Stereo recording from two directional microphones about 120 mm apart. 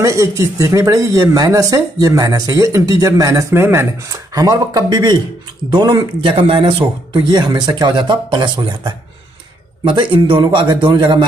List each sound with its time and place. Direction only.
0.0 s speech: 25° right (ahead or behind)
9.8 s speech: 45° right (ahead or behind)